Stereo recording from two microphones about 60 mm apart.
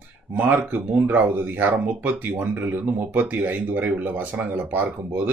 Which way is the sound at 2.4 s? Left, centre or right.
Right.